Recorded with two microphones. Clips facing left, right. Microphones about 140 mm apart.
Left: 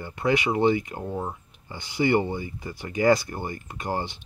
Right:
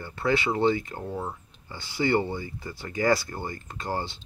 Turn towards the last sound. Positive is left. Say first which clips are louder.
# left 2 dB
turn(degrees=15)  # may be behind; listen again after turning